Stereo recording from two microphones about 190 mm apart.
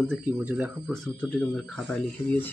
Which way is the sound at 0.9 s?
5° left (ahead or behind).